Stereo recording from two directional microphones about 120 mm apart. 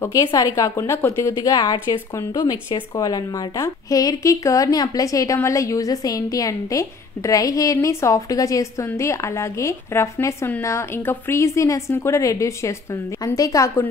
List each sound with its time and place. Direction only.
0.0 s a woman's voice: 25° left (ahead or behind)